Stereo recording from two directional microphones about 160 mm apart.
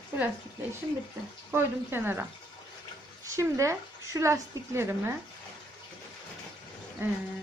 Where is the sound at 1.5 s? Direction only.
15° right (ahead or behind).